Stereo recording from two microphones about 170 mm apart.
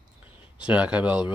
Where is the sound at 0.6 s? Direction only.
5° right (ahead or behind).